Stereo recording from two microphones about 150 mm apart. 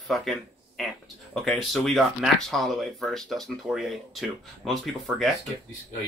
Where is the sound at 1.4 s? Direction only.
Centre (ahead or behind).